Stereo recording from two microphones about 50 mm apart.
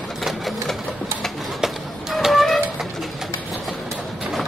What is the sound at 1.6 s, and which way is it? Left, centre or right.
Bird, centre.